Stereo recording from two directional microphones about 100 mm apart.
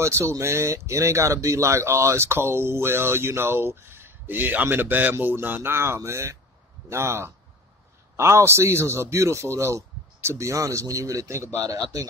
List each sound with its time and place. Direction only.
0.0 s speech: 30° right (ahead or behind)